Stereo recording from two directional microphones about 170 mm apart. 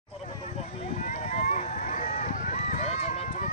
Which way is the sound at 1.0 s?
40° left (ahead or behind).